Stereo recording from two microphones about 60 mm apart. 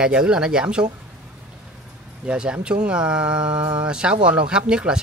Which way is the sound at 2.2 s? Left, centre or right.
Centre.